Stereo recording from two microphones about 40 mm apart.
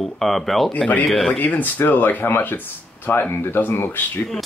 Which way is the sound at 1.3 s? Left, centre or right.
Left.